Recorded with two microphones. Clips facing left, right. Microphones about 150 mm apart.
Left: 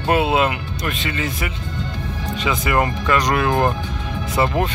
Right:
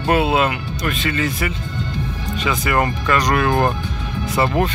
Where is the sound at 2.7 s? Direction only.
15° left (ahead or behind).